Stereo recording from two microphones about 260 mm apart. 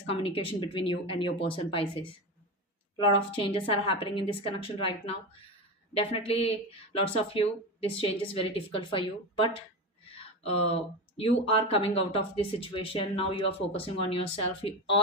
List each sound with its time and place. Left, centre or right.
0.2 s speech: left
3.3 s speech: centre